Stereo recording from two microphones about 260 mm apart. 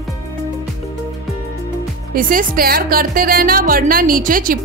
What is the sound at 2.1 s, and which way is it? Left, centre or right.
Speech, right.